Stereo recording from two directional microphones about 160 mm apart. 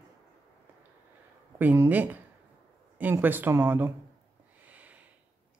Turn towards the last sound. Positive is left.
turn(degrees=-10)  # may be behind; listen again after turning